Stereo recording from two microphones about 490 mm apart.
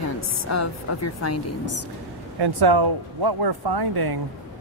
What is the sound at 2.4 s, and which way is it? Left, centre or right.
Speech, right.